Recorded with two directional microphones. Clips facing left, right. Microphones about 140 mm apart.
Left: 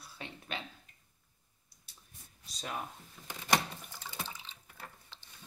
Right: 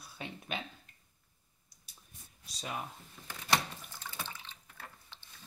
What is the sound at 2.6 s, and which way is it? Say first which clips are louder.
Speech: even; 5° right (ahead or behind).